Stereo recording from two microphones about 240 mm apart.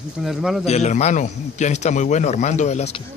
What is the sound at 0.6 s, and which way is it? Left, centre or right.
A man's voice, left.